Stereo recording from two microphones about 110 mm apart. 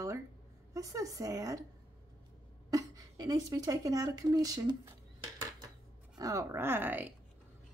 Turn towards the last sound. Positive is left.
turn(degrees=-15)  # may be behind; listen again after turning